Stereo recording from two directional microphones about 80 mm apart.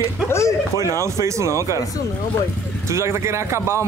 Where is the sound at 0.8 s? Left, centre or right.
Right.